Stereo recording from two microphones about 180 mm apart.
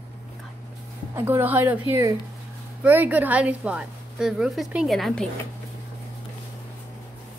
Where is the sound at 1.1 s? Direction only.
10° right (ahead or behind).